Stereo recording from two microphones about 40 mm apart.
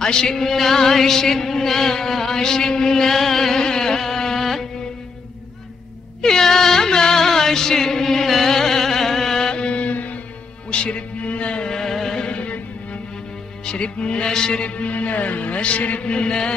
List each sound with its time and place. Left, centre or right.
0.0 s chant: centre
6.2 s music: centre
9.6 s a sound: left
10.7 s music: left
11.7 s music: centre
12.3 s music: left
13.7 s music: left
14.6 s speech: left
16.1 s music: left